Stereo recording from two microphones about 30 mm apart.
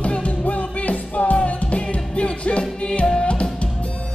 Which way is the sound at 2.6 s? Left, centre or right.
Left.